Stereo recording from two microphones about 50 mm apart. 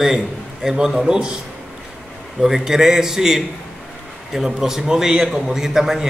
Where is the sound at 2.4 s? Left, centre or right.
Centre.